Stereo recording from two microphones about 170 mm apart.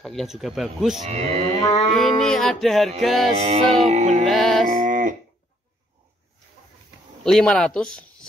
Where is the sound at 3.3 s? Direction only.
40° right (ahead or behind).